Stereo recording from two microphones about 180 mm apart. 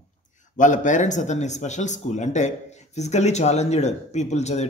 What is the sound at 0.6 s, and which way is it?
Speech, 45° left (ahead or behind).